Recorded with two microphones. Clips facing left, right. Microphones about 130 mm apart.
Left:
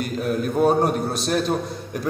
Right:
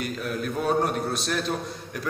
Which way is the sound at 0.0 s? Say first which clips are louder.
Left 6 dB; 45° left (ahead or behind).